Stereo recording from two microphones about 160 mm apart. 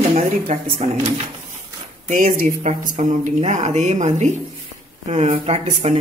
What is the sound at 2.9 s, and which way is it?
A woman's voice, 45° right (ahead or behind).